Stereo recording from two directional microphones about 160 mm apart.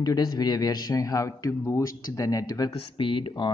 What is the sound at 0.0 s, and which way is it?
A man's voice, 25° left (ahead or behind).